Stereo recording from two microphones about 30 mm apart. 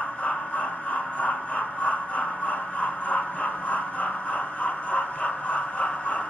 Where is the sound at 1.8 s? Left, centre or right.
Left.